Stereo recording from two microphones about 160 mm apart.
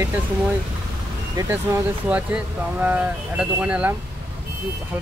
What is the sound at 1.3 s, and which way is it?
Speech, 15° right (ahead or behind).